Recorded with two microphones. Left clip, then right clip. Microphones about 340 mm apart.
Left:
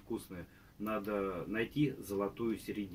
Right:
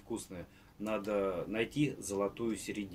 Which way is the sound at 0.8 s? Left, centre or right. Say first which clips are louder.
Right 3 dB; centre.